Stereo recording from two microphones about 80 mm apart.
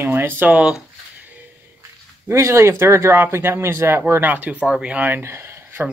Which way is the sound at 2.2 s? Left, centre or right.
Right.